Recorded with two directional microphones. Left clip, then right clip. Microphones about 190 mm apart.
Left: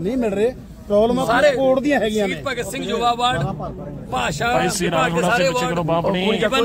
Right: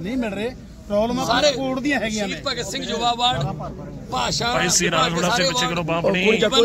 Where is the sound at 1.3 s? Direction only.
10° left (ahead or behind).